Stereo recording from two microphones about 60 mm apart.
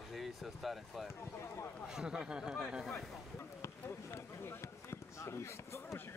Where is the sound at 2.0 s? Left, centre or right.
Centre.